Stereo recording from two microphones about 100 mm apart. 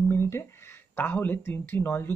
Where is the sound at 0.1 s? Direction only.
25° left (ahead or behind).